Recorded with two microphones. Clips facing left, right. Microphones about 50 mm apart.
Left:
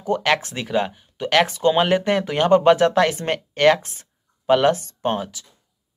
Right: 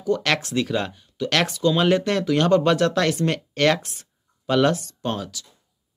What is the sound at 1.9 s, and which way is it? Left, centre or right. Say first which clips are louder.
Speech: even; centre.